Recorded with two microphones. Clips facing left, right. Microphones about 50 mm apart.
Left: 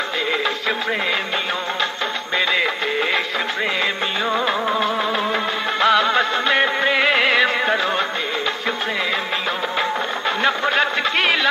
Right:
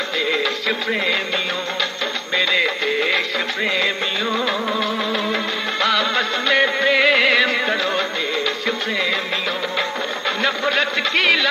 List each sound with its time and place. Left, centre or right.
0.4 s music: centre
2.3 s music: centre
4.4 s music: left
10.4 s a man's voice: centre